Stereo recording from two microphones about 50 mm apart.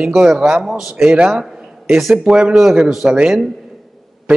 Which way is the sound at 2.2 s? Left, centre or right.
Centre.